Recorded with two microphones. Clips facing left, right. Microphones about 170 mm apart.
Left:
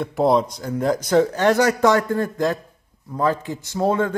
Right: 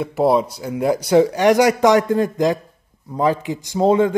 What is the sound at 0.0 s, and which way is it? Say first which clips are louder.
Speech: right 1 dB; 5° right (ahead or behind).